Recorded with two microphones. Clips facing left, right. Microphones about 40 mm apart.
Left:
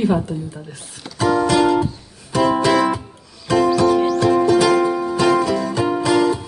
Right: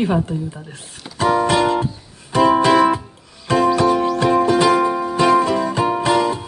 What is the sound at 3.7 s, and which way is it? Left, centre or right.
Music, right.